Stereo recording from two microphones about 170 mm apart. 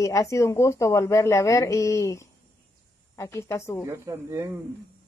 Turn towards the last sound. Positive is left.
turn(degrees=-15)  # may be behind; listen again after turning